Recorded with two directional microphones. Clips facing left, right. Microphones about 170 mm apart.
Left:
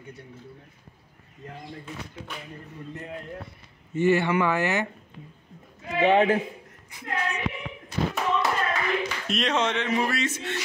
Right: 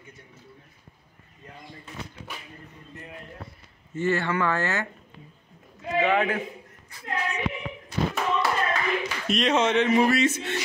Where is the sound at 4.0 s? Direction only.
15° left (ahead or behind).